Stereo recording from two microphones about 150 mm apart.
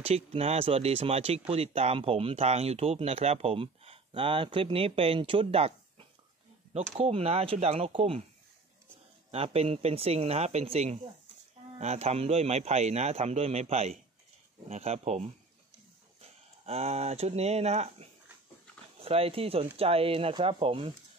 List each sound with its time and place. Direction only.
0.0 s speech: 40° right (ahead or behind)
9.3 s a man's voice: 40° right (ahead or behind)